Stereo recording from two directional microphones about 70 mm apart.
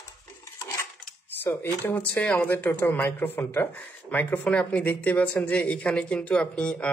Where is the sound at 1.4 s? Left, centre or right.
Left.